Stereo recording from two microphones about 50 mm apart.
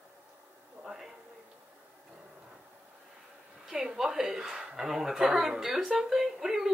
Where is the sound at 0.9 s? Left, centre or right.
Centre.